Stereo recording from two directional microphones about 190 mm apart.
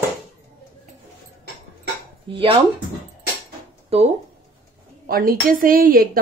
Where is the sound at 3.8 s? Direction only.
30° right (ahead or behind).